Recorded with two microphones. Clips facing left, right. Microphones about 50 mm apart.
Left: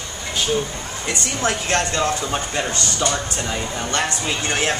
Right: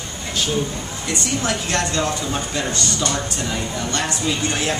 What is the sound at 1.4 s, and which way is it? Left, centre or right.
Speech, left.